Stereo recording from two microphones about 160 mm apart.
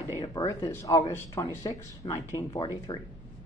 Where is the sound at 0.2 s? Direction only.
20° left (ahead or behind).